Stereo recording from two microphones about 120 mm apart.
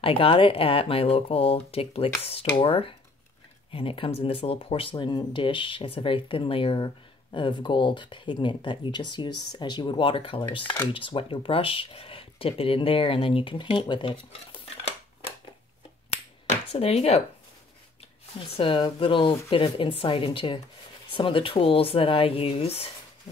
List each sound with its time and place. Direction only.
0.0 s speech: 50° left (ahead or behind)
10.6 s speech: 15° left (ahead or behind)
10.9 s speech: 45° left (ahead or behind)
16.4 s a sound: 60° left (ahead or behind)
18.6 s speech: 45° left (ahead or behind)